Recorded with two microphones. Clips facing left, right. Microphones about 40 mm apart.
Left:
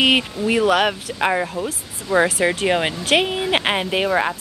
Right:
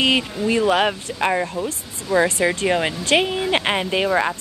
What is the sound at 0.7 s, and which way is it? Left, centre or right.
Speech, centre.